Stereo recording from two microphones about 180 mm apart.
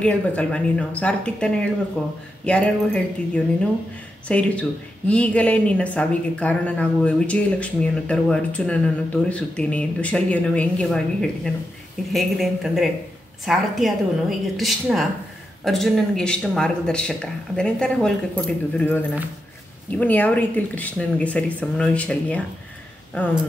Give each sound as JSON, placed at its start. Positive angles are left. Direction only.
{"t": 0.0, "sound": "speech", "side_deg": 5}
{"t": 20.0, "sound": "speech", "side_deg": 10}